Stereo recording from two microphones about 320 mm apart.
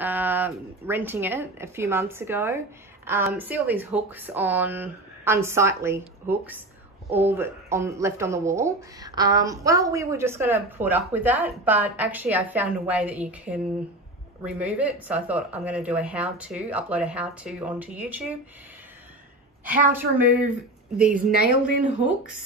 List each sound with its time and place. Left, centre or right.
0.0 s speech: centre
19.9 s speech: centre
21.3 s speech: left